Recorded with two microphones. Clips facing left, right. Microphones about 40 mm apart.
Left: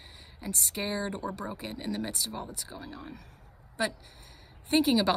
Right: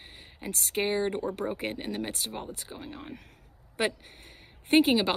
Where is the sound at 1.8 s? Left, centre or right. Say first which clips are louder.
Even; right.